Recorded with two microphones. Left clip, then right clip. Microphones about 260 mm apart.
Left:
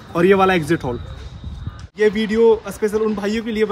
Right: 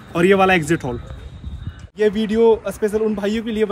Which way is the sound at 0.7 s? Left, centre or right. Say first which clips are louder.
Left 1 dB; centre.